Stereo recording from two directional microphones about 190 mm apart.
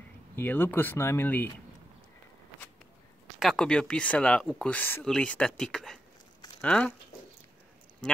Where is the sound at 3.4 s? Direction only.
5° left (ahead or behind).